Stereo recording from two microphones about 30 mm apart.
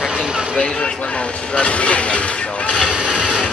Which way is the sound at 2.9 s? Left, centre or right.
Right.